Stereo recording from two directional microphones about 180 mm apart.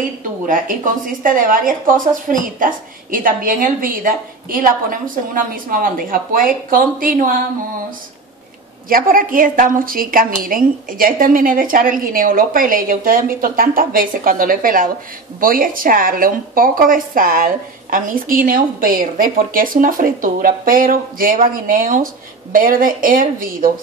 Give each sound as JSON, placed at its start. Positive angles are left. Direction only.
{"t": 0.5, "sound": "speech", "side_deg": -50}
{"t": 8.8, "sound": "speech", "side_deg": -50}